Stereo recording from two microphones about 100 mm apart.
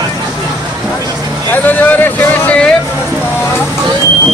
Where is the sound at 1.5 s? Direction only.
15° left (ahead or behind).